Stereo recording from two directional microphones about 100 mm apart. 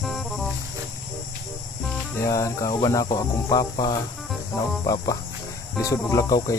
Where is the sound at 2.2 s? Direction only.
35° left (ahead or behind).